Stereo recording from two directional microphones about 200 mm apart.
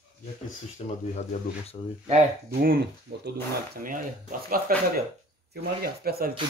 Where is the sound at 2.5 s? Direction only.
50° right (ahead or behind).